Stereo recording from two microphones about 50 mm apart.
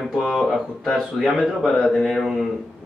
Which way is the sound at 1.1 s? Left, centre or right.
Centre.